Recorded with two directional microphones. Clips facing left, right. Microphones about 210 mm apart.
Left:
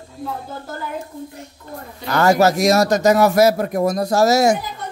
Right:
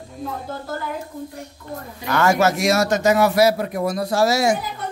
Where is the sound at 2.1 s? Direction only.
35° left (ahead or behind).